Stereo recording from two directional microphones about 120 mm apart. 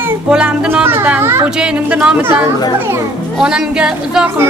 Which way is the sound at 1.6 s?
10° right (ahead or behind).